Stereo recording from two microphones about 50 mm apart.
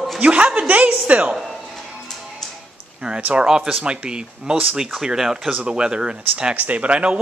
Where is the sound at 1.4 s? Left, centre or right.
Centre.